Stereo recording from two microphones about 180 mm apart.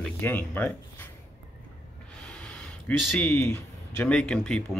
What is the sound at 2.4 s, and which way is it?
Speech, 5° left (ahead or behind).